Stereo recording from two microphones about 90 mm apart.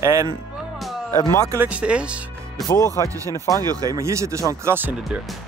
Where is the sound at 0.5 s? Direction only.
Centre (ahead or behind).